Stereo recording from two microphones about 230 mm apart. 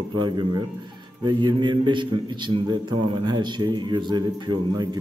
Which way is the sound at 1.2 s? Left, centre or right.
Centre.